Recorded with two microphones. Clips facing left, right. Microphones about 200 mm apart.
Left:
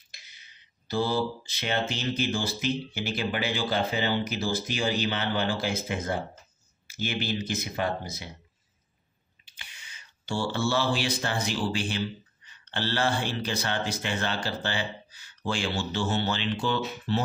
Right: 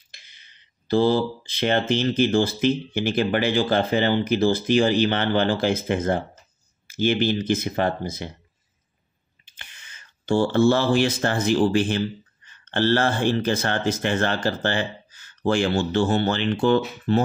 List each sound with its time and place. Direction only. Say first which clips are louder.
0.4 s speech: right 1 dB; 55° right (ahead or behind)
9.6 s a sound: right 2 dB; 50° right (ahead or behind)
11.4 s speech: right 10 dB; 50° right (ahead or behind)